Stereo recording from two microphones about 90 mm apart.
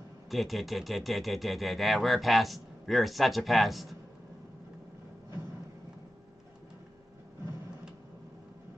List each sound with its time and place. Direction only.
0.3 s speech: centre (ahead or behind)